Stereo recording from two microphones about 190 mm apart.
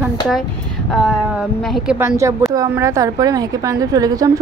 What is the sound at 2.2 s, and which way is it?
A woman's voice, 15° right (ahead or behind).